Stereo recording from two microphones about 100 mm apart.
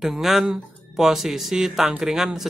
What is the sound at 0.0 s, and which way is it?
Speech, 5° right (ahead or behind).